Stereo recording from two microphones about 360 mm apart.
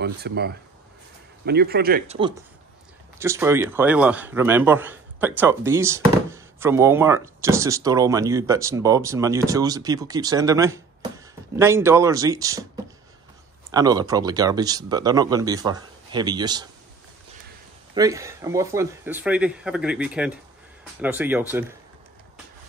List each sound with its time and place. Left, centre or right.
0.0 s a man's voice: right; by 12.6 s centre
13.7 s a man's voice: centre
17.9 s speech: centre